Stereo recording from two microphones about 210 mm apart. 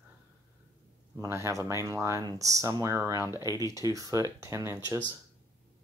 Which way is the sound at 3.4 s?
15° left (ahead or behind).